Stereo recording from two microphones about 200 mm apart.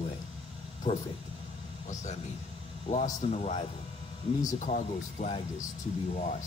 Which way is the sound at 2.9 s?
35° left (ahead or behind).